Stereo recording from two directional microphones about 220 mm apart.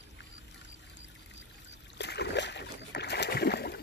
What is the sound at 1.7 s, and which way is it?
Rowboat, 50° left (ahead or behind).